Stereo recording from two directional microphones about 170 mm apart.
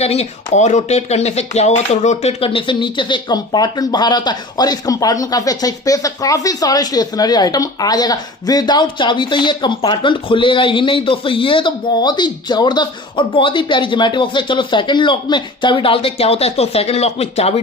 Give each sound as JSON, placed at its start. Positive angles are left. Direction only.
{"t": 0.0, "sound": "speech", "side_deg": 40}